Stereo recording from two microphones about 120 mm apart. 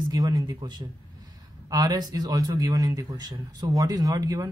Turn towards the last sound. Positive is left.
turn(degrees=-30)  # may be behind; listen again after turning